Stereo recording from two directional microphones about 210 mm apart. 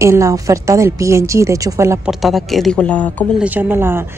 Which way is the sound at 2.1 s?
Centre (ahead or behind).